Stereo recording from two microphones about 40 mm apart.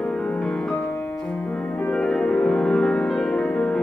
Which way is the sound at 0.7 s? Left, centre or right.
Left.